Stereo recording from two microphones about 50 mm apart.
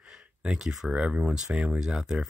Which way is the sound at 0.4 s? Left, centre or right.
Centre.